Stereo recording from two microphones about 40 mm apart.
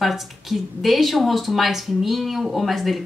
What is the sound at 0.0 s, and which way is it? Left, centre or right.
Speech, centre.